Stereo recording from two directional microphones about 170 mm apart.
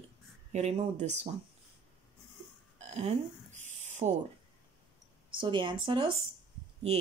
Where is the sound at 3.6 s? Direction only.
45° right (ahead or behind).